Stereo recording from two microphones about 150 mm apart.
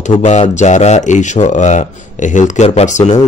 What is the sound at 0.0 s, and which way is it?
A man's voice, 50° left (ahead or behind).